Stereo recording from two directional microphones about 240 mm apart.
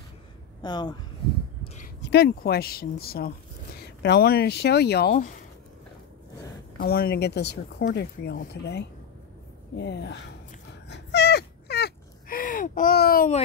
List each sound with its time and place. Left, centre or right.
0.6 s speech: centre
1.6 s speech: left
6.8 s speech: left
9.8 s cat: left